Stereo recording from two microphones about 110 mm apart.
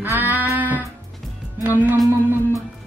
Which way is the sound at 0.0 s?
15° right (ahead or behind).